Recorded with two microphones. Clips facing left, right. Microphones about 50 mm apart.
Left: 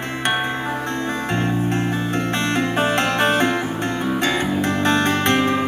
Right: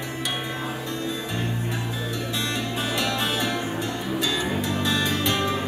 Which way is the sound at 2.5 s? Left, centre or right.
Left.